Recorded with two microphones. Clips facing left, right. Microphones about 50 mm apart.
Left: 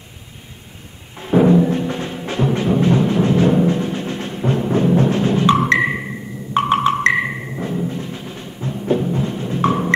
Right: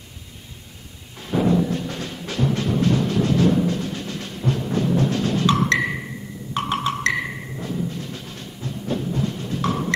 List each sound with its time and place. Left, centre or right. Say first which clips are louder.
1.1 s music: left 7 dB; left